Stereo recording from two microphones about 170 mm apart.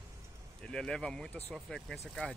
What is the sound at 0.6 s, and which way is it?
Speech, 5° left (ahead or behind).